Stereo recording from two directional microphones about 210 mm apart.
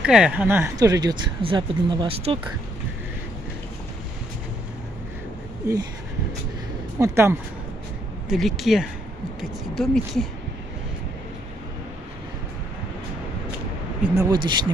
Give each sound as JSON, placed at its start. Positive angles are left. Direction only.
{"t": 0.0, "sound": "speech", "side_deg": -5}
{"t": 5.6, "sound": "speech", "side_deg": -15}
{"t": 7.0, "sound": "speech", "side_deg": -15}
{"t": 8.3, "sound": "speech", "side_deg": 0}
{"t": 14.1, "sound": "speech", "side_deg": -20}